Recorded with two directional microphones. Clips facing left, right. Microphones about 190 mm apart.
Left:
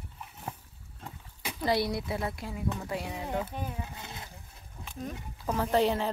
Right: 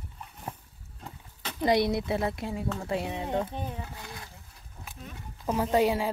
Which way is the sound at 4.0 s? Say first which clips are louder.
Right 1 dB; 20° left (ahead or behind).